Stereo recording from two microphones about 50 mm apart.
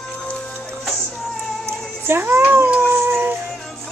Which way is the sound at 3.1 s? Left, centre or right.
Right.